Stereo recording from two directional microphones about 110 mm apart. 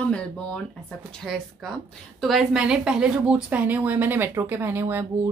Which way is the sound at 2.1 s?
Centre (ahead or behind).